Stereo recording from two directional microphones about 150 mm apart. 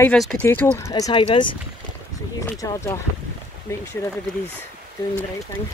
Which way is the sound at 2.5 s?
20° left (ahead or behind).